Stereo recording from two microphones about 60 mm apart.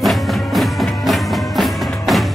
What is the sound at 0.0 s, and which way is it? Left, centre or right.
Music, centre.